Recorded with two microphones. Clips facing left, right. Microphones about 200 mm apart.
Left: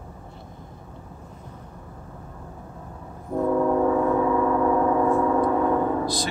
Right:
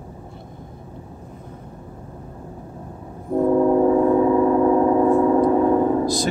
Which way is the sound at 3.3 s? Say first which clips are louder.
Right 5 dB; 25° right (ahead or behind).